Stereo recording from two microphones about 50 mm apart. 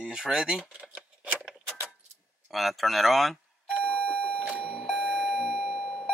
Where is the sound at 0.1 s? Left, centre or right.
Centre.